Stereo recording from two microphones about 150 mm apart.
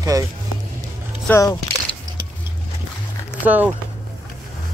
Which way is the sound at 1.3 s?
25° left (ahead or behind).